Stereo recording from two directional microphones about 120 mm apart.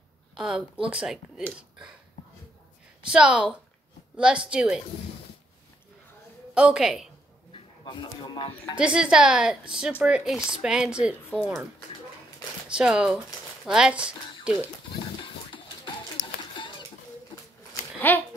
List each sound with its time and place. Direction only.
0.3 s a woman's voice: 10° right (ahead or behind)
3.1 s a woman's voice: 5° right (ahead or behind)
6.5 s a woman's voice: 5° right (ahead or behind)
7.5 s speech: 40° left (ahead or behind)
8.7 s a woman's voice: 10° right (ahead or behind)
12.6 s a woman's voice: 5° right (ahead or behind)
15.0 s a sound: 40° left (ahead or behind)
18.1 s a child's voice: 15° left (ahead or behind)